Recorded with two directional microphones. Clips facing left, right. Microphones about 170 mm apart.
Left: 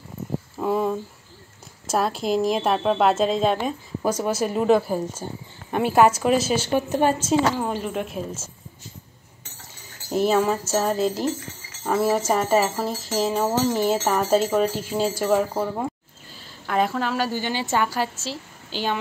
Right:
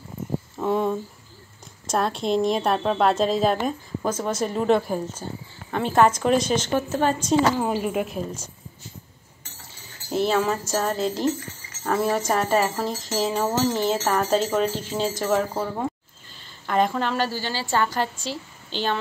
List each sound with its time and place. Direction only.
0.6 s a sound: 5° left (ahead or behind)
1.9 s a woman's voice: 5° left (ahead or behind)
3.5 s speech: 10° left (ahead or behind)
7.6 s a woman's voice: 5° right (ahead or behind)
10.2 s a woman's voice: 5° left (ahead or behind)
17.3 s speech: 15° left (ahead or behind)